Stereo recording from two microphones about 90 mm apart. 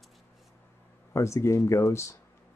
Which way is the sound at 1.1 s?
35° left (ahead or behind).